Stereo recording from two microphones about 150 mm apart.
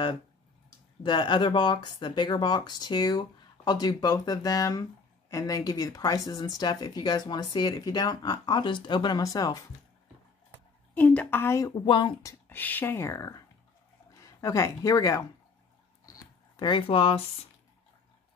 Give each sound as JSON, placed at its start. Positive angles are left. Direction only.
{"t": 1.0, "sound": "speech", "side_deg": 30}
{"t": 11.0, "sound": "a woman's voice", "side_deg": 10}
{"t": 11.7, "sound": "speech", "side_deg": 30}
{"t": 16.1, "sound": "a sound", "side_deg": 30}